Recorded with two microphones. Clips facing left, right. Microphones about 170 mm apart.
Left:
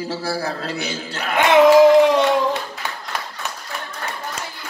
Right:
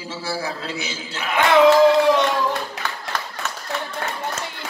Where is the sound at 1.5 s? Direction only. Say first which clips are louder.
Left 3 dB; 15° left (ahead or behind).